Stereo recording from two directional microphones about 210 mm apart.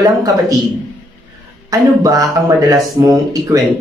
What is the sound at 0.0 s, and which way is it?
Speech, 15° right (ahead or behind).